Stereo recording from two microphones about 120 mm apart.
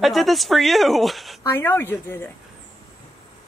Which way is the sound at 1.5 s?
20° left (ahead or behind).